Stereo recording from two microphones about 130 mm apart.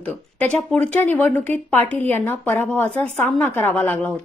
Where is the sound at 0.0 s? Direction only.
10° left (ahead or behind).